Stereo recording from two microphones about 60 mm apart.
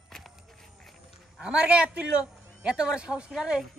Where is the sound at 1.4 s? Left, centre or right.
Centre.